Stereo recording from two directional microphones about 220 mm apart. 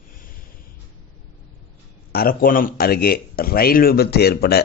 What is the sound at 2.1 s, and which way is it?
A man's voice, 45° left (ahead or behind).